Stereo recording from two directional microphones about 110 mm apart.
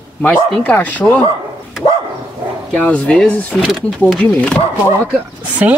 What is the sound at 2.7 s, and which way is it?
Speech, 10° left (ahead or behind).